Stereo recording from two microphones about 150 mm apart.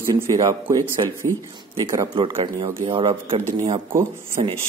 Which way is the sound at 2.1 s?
35° right (ahead or behind).